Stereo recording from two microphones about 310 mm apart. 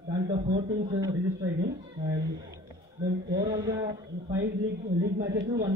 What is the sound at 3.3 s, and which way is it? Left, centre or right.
A man's voice, centre.